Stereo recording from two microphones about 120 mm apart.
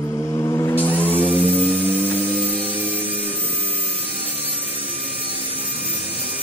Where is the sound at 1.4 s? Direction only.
55° right (ahead or behind).